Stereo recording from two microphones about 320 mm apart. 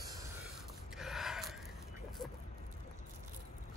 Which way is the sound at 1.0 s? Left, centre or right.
Centre.